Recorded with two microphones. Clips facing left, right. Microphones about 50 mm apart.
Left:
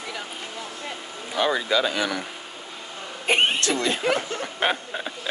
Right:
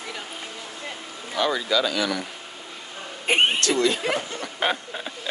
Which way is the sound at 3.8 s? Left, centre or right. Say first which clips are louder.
Right 1 dB; left.